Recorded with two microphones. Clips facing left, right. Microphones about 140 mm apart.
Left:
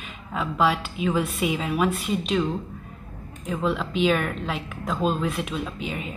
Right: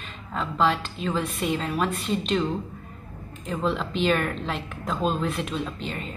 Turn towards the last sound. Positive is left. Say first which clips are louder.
# left 1 dB
turn(degrees=10)  # may be behind; listen again after turning